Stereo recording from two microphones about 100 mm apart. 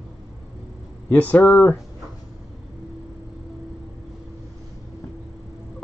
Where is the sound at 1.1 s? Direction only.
15° left (ahead or behind).